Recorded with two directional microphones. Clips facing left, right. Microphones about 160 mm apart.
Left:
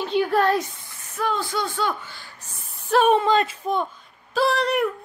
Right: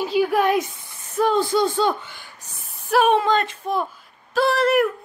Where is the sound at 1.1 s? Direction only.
30° right (ahead or behind).